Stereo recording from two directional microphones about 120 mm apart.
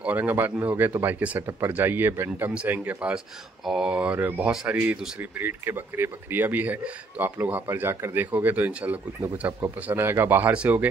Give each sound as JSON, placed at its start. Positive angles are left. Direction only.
{"t": 0.0, "sound": "speech", "side_deg": -15}